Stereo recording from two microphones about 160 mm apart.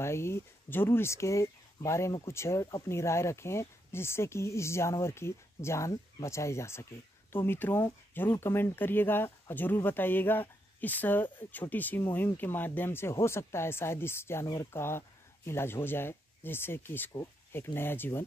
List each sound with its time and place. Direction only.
0.0 s speech: 15° left (ahead or behind)